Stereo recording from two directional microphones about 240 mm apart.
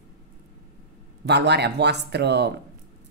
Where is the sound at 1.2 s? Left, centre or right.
Right.